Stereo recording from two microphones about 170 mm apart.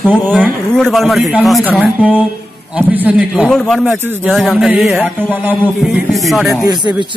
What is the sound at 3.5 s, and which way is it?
A man's voice, 5° left (ahead or behind).